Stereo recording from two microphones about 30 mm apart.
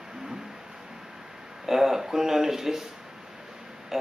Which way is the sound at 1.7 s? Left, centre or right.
Centre.